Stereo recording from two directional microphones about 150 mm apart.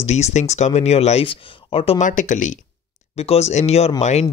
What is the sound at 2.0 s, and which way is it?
Speech, 55° left (ahead or behind).